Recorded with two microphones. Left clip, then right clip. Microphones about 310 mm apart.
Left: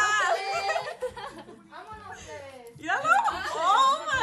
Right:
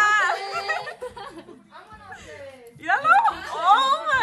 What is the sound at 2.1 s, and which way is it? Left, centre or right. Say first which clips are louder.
Chuckle: right 2 dB; centre.